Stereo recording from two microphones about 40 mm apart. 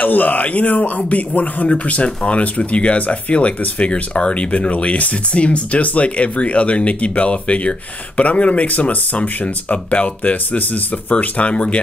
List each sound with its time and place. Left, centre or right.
0.0 s speech: left